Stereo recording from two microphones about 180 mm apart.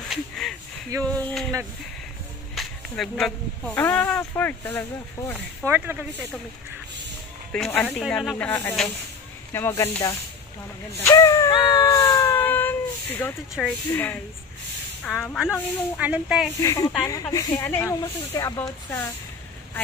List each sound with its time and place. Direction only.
0.1 s a sound: 5° left (ahead or behind)
1.0 s speech: 5° left (ahead or behind)
2.5 s speech: centre (ahead or behind)
5.7 s speech: 10° right (ahead or behind)
7.5 s speech: 5° left (ahead or behind)
11.8 s cat: 15° left (ahead or behind)
13.6 s speech: 10° left (ahead or behind); by 16.4 s 5° right (ahead or behind)
16.5 s speech: 20° left (ahead or behind)